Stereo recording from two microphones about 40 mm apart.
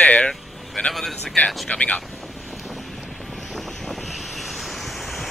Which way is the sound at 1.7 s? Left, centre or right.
Left.